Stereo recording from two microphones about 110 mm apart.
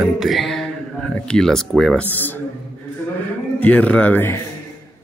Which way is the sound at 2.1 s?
15° left (ahead or behind).